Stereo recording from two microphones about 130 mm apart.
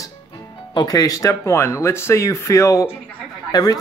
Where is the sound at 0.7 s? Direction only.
30° left (ahead or behind).